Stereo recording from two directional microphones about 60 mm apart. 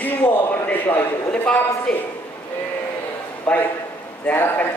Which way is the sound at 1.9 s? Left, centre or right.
Centre.